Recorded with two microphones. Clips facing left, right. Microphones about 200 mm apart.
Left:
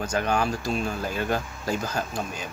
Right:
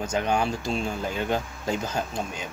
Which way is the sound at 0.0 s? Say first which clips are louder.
Even; 20° right (ahead or behind).